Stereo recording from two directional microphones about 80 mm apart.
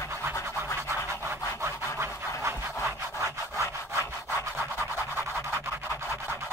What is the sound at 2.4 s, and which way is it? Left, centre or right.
Sawing, right.